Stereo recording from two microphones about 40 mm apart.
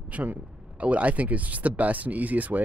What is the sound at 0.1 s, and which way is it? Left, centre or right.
Speech, right.